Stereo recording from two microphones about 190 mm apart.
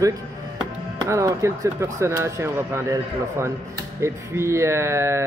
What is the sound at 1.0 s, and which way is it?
Speech, 15° right (ahead or behind).